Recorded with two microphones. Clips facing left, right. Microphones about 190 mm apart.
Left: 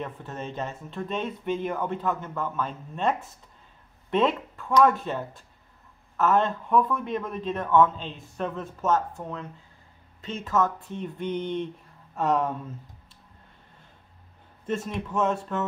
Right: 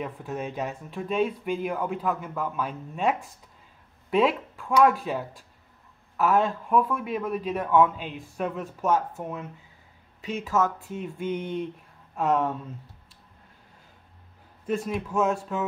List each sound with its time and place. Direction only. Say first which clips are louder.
0.0 s speech: right 3 dB; 10° right (ahead or behind)
14.7 s speech: right 2 dB; 5° right (ahead or behind)